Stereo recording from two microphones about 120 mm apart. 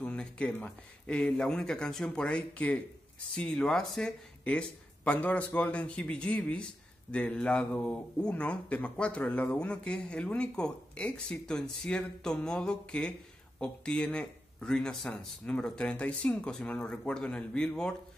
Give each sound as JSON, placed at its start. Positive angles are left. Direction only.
{"t": 0.0, "sound": "speech", "side_deg": 10}